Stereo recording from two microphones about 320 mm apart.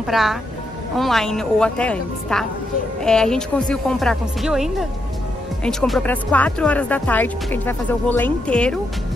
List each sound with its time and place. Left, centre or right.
0.0 s speech: centre